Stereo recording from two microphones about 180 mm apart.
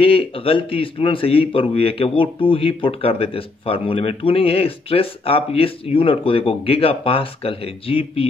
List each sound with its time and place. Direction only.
0.0 s speech: 30° left (ahead or behind)